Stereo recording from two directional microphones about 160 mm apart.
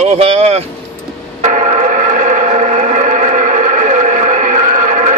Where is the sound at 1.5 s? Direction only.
45° right (ahead or behind).